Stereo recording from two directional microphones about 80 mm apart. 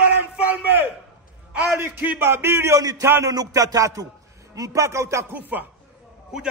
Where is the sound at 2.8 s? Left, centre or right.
Right.